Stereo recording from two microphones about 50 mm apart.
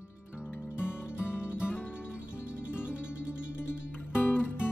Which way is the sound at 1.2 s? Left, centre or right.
Left.